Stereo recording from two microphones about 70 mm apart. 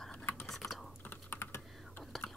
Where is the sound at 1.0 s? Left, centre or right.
Left.